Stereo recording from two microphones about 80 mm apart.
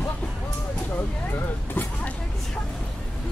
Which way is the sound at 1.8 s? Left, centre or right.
Left.